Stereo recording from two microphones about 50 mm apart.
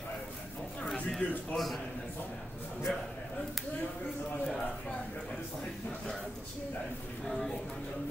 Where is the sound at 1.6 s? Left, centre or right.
Centre.